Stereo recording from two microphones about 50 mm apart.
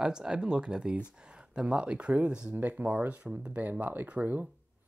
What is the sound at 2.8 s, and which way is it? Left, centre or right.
Speech, right.